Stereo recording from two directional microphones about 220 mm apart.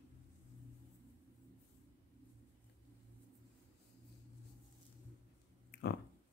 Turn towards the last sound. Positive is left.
turn(degrees=50)  # may be behind; listen again after turning